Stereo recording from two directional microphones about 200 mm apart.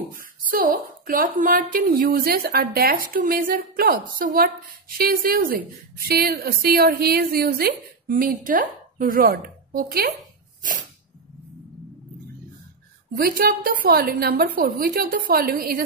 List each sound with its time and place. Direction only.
0.1 s a woman's voice: 45° right (ahead or behind)
13.1 s a woman's voice: 45° right (ahead or behind)